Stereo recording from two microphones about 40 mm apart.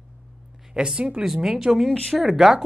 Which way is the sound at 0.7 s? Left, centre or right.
Right.